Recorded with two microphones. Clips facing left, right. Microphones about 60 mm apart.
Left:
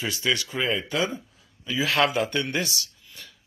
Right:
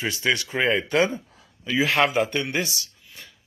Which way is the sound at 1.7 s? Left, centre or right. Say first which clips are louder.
Right 2 dB; right.